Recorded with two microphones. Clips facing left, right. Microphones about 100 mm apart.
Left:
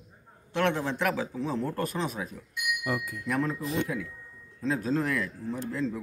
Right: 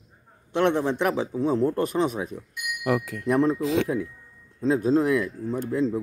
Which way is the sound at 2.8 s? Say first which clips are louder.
Right 12 dB; 90° right.